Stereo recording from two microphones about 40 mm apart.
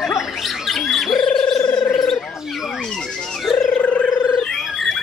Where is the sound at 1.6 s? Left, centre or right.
Left.